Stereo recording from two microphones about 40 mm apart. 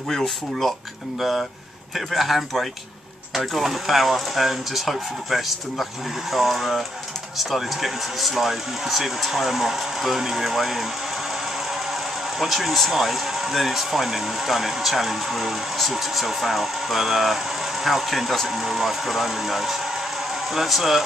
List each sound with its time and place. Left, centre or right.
0.1 s speech: centre
2.0 s speech: centre